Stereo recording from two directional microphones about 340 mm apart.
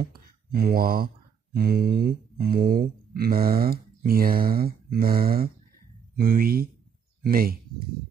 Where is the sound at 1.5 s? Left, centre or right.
Right.